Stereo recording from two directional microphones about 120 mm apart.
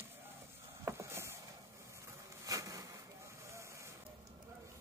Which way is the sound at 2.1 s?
25° right (ahead or behind).